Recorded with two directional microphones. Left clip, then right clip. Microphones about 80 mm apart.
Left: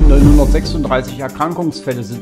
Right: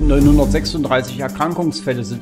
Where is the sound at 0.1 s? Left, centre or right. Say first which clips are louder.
Left 1 dB; right.